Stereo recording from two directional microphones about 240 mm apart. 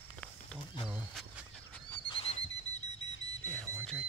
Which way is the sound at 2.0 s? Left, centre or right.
Left.